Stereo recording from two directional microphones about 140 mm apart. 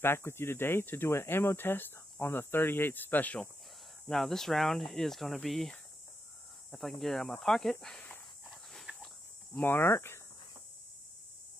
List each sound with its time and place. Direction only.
0.0 s speech: 15° left (ahead or behind)
8.5 s dog: centre (ahead or behind)
9.5 s speech: 15° left (ahead or behind)